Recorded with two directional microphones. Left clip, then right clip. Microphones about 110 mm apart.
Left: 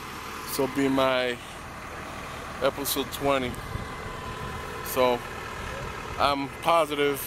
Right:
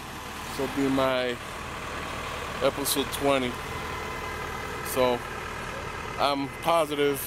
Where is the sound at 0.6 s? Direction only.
35° left (ahead or behind).